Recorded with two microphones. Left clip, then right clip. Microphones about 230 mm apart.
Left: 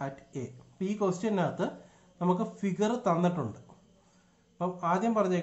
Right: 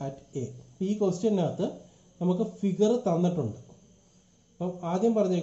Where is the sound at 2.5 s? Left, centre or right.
Centre.